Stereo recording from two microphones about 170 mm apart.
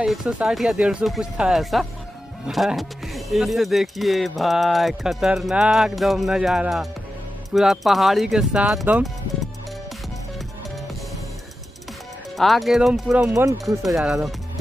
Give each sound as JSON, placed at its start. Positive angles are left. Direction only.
{"t": 0.0, "sound": "speech", "side_deg": -5}
{"t": 12.4, "sound": "speech", "side_deg": 0}
{"t": 13.3, "sound": "speech", "side_deg": -20}
{"t": 14.0, "sound": "speech", "side_deg": -5}